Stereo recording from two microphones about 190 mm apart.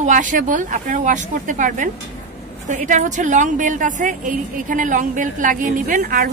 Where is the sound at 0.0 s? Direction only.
40° right (ahead or behind).